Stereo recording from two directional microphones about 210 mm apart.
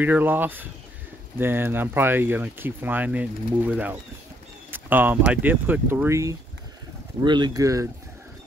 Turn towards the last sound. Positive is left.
turn(degrees=-15)  # may be behind; listen again after turning